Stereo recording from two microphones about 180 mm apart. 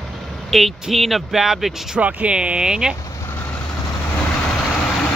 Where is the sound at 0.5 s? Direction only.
Centre (ahead or behind).